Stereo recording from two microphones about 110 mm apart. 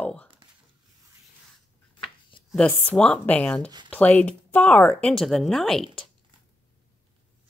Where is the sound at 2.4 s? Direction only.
10° left (ahead or behind).